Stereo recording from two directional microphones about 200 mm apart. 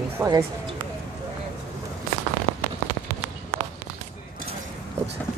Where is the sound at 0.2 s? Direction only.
Centre (ahead or behind).